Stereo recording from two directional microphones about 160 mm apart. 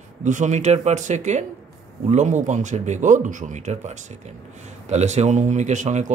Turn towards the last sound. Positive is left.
turn(degrees=-50)  # may be behind; listen again after turning